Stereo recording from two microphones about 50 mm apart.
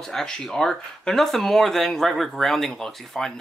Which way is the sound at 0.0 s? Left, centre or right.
Centre.